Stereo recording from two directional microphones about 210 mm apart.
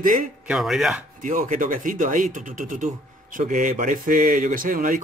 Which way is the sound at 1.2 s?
40° right (ahead or behind).